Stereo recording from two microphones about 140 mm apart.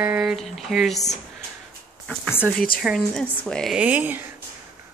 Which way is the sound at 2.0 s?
10° left (ahead or behind).